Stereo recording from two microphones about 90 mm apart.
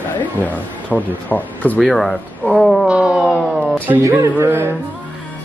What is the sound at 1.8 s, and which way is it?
Speech, centre (ahead or behind).